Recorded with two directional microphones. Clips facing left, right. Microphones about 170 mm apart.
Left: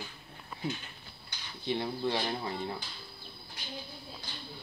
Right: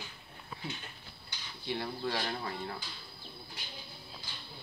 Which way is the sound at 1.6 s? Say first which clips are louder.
Left 4 dB; 20° left (ahead or behind).